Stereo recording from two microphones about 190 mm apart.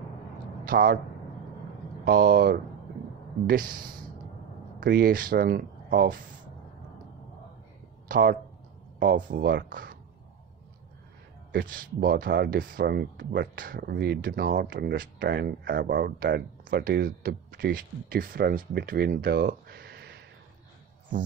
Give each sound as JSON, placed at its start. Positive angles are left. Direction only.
{"t": 0.7, "sound": "a man's voice", "side_deg": -50}
{"t": 2.0, "sound": "speech", "side_deg": -50}
{"t": 3.8, "sound": "speech", "side_deg": -20}
{"t": 4.7, "sound": "speech", "side_deg": -50}
{"t": 8.1, "sound": "speech", "side_deg": -50}
{"t": 11.5, "sound": "speech", "side_deg": -45}